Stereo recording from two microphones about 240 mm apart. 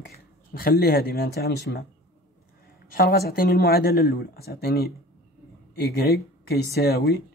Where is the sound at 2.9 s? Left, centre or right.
Left.